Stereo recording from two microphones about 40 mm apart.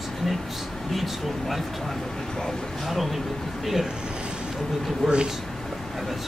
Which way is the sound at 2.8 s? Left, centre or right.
Centre.